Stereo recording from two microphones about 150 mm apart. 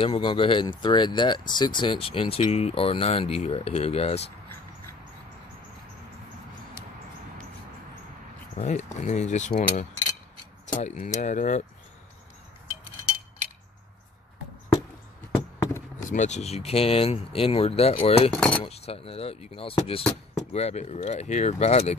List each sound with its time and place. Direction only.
0.0 s speech: 35° left (ahead or behind)
8.5 s speech: 50° left (ahead or behind)
16.1 s speech: 50° left (ahead or behind)
18.3 s speech: 10° left (ahead or behind)
18.6 s speech: 40° left (ahead or behind)
20.0 s a sound: 5° left (ahead or behind)
20.5 s speech: 45° left (ahead or behind)